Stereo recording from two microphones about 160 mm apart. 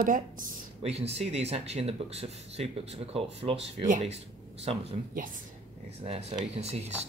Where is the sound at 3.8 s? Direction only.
50° right (ahead or behind).